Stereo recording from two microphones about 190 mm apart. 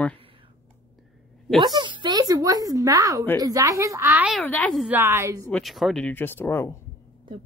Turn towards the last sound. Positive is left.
turn(degrees=10)  # may be behind; listen again after turning